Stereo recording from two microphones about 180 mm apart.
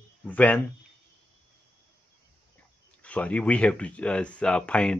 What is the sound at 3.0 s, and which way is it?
Speech, 5° left (ahead or behind).